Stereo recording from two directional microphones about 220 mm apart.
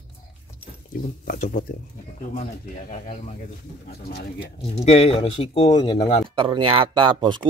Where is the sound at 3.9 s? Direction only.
45° left (ahead or behind).